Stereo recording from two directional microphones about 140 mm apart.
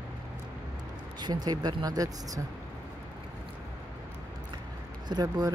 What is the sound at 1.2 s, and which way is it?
Speech, 30° right (ahead or behind).